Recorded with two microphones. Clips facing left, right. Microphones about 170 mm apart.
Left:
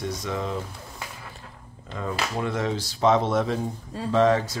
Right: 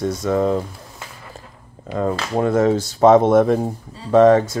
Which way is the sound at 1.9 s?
50° right (ahead or behind).